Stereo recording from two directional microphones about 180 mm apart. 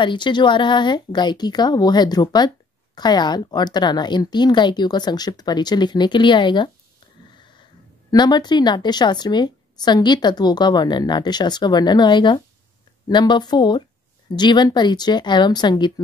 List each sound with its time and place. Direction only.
0.0 s a woman's voice: 25° left (ahead or behind)
8.1 s a woman's voice: 25° left (ahead or behind)